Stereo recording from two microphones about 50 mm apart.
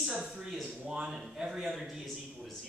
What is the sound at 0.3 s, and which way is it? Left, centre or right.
Speech, centre.